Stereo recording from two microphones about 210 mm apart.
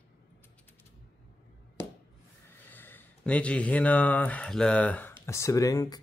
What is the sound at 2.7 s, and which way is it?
Speech, 10° left (ahead or behind).